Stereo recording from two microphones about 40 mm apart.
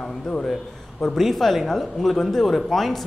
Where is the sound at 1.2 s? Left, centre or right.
Centre.